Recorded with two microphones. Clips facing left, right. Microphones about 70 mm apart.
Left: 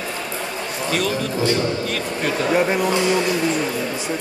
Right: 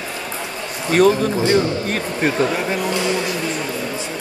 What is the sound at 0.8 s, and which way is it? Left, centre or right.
Speech, right.